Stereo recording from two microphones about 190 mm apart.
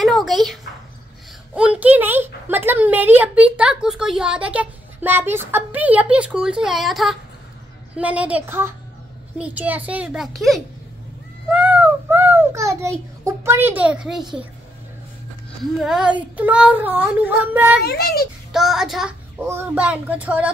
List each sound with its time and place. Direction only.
0.0 s a sound: centre (ahead or behind)
1.5 s a woman's voice: 5° right (ahead or behind)
15.8 s a woman's voice: 5° right (ahead or behind)
17.8 s a child's voice: 55° left (ahead or behind)
18.5 s a woman's voice: centre (ahead or behind)